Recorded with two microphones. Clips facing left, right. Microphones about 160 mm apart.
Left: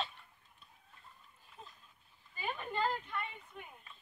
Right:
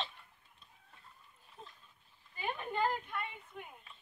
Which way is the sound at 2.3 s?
20° right (ahead or behind).